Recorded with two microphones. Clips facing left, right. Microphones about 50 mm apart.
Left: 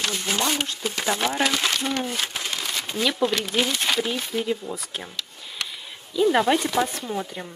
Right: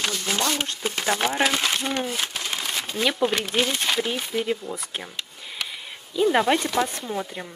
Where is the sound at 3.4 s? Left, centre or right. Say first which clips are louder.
Even; centre.